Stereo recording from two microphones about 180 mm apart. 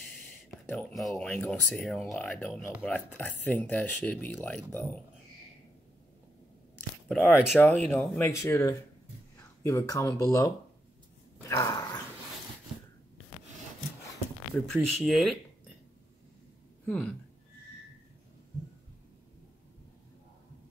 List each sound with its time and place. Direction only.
0.5 s speech: 5° left (ahead or behind)
7.1 s speech: centre (ahead or behind); by 10.5 s 15° left (ahead or behind)
11.3 s a sound: 15° left (ahead or behind)
14.7 s speech: centre (ahead or behind)
16.8 s speech: 10° left (ahead or behind)